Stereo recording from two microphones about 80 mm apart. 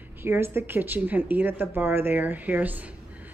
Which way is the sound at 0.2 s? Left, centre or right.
Right.